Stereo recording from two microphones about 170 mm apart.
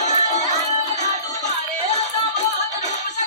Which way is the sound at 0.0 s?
40° left (ahead or behind).